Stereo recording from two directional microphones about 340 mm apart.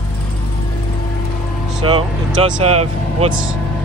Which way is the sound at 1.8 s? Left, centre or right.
Centre.